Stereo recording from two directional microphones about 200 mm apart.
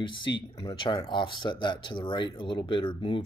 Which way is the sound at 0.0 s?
25° left (ahead or behind).